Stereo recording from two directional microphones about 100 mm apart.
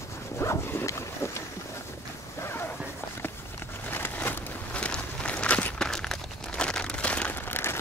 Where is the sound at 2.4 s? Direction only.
25° left (ahead or behind).